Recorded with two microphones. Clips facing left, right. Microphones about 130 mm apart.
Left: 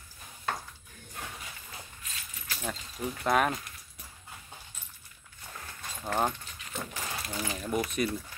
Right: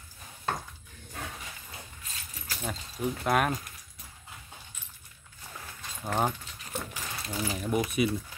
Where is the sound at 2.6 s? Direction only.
Centre (ahead or behind).